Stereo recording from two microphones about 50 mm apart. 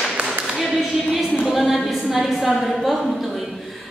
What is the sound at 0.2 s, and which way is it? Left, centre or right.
Clapping, right.